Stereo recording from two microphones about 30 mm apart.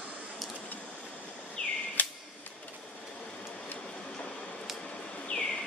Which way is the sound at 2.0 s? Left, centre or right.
Left.